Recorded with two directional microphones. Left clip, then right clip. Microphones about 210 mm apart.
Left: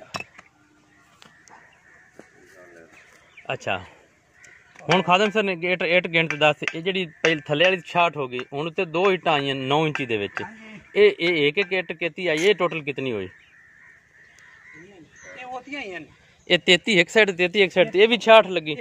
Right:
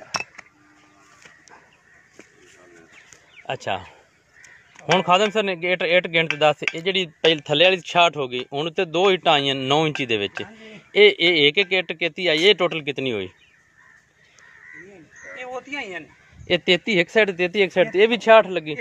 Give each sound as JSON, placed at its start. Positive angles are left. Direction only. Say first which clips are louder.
{"t": 3.4, "sound": "a man's voice", "louder": "right 1 dB", "side_deg": -5}
{"t": 6.9, "sound": "speech", "louder": "right 3 dB", "side_deg": -20}
{"t": 15.2, "sound": "a sound", "louder": "right 3 dB", "side_deg": -10}
{"t": 16.4, "sound": "speech", "louder": "left 1 dB", "side_deg": 0}